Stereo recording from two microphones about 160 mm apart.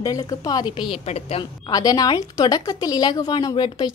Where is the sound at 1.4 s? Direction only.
25° left (ahead or behind).